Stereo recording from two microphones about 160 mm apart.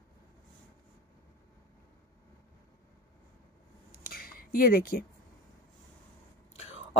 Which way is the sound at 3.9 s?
70° left (ahead or behind).